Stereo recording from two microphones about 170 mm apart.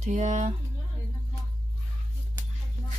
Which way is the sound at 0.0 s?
45° right (ahead or behind).